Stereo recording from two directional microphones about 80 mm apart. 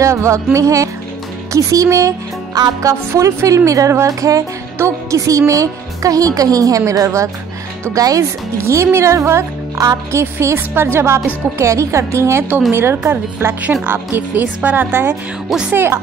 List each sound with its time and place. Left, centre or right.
0.0 s a woman's voice: right
8.5 s speech: right